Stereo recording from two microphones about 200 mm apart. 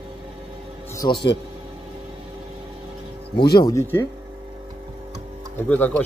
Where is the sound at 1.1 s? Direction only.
55° left (ahead or behind).